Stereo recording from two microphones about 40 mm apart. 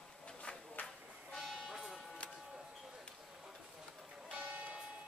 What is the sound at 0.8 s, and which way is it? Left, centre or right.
Train, left.